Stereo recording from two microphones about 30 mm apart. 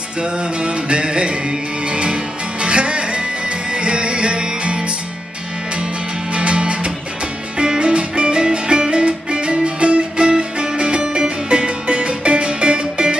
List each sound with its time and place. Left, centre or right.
0.8 s music: right
2.6 s music: right
6.3 s music: right